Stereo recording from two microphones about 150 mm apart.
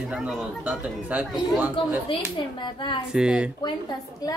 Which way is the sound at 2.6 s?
30° left (ahead or behind).